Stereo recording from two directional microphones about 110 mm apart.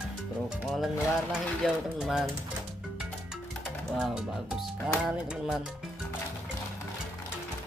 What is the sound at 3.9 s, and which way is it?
Speech, centre (ahead or behind).